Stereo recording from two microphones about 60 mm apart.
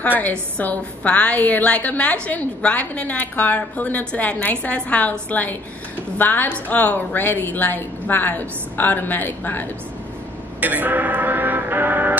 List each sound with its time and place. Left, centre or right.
0.2 s a woman's voice: left
10.6 s music: right